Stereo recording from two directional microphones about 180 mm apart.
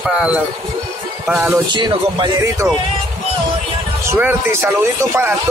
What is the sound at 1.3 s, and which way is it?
Music, 5° right (ahead or behind).